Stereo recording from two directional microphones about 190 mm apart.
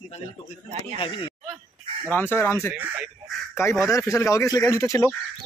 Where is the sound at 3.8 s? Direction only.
15° left (ahead or behind).